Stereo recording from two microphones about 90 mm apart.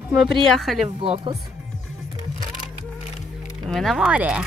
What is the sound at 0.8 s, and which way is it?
Speech, 90° right.